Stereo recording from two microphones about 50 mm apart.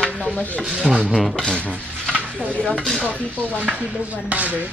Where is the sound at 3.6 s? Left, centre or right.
Right.